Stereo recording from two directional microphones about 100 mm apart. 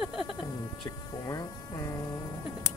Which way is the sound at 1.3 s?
35° left (ahead or behind).